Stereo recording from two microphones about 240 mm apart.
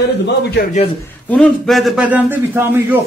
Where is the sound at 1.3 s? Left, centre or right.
Centre.